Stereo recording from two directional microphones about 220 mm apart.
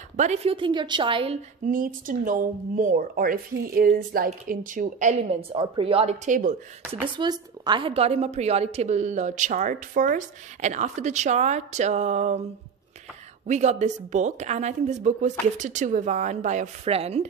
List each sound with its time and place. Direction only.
0.2 s a woman's voice: 30° right (ahead or behind)
1.7 s a woman's voice: 40° right (ahead or behind)
7.2 s a woman's voice: 20° right (ahead or behind)
13.5 s a woman's voice: 30° right (ahead or behind)